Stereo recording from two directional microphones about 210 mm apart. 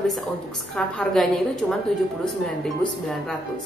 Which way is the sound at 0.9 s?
Centre (ahead or behind).